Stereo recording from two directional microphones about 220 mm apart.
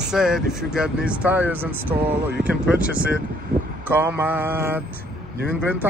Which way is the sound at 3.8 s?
10° right (ahead or behind).